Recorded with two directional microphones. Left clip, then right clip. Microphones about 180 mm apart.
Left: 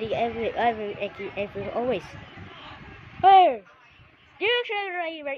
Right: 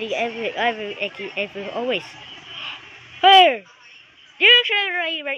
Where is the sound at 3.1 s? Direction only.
10° right (ahead or behind).